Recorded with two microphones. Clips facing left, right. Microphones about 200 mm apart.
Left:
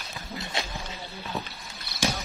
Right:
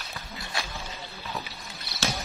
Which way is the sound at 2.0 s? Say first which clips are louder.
Left 3 dB; 15° left (ahead or behind).